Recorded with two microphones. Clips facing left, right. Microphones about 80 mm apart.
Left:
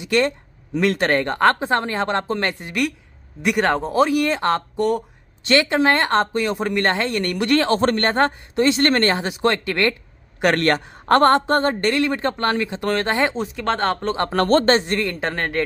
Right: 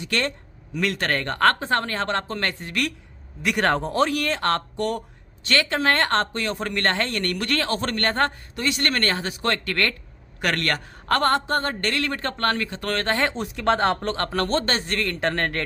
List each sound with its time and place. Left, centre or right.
0.0 s speech: centre
3.5 s speech: centre
5.4 s speech: left
10.4 s a man's voice: left
11.1 s a man's voice: left
11.6 s speech: left; by 14.1 s centre
14.3 s a man's voice: left
14.9 s speech: centre